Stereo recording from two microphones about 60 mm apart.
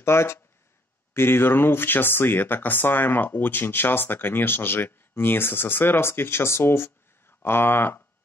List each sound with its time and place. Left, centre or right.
0.0 s speech: left